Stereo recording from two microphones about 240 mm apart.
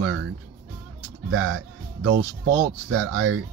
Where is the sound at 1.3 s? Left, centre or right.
Right.